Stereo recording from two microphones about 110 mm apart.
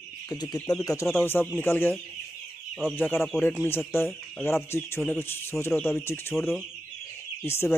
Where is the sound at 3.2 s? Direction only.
Centre (ahead or behind).